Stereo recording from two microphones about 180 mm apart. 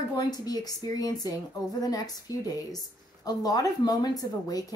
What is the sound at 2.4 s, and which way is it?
A woman's voice, 20° left (ahead or behind).